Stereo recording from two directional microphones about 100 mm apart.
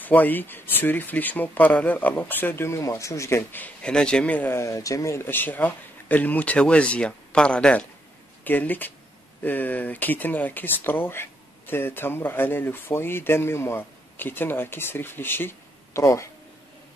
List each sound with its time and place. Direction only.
0.0 s speech: 20° left (ahead or behind)
3.8 s speech: 10° left (ahead or behind); by 16.3 s 30° left (ahead or behind)